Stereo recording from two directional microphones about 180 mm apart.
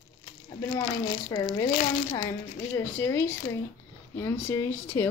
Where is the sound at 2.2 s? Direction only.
15° left (ahead or behind).